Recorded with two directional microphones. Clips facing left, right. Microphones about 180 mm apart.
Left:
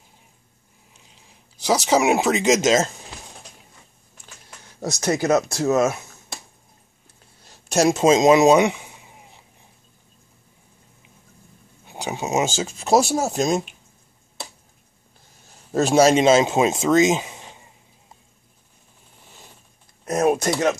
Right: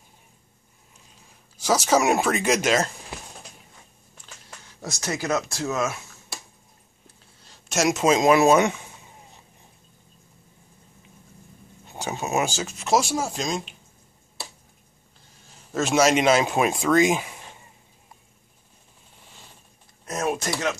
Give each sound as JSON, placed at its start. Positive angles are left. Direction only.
{"t": 1.9, "sound": "speech", "side_deg": 15}
{"t": 4.8, "sound": "speech", "side_deg": 40}
{"t": 7.4, "sound": "a sound", "side_deg": 35}
{"t": 11.8, "sound": "speech", "side_deg": 15}
{"t": 15.7, "sound": "speech", "side_deg": 35}
{"t": 20.1, "sound": "a sound", "side_deg": 40}